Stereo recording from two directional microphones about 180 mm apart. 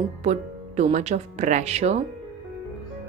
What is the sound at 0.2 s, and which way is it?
Speech, 40° right (ahead or behind).